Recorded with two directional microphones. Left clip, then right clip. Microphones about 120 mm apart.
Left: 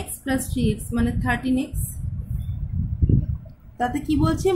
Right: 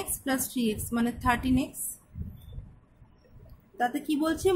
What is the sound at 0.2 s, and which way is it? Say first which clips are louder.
A woman's voice: left 5 dB; 50° right (ahead or behind).